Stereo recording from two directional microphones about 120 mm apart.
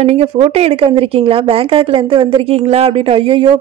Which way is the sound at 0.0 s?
55° right (ahead or behind).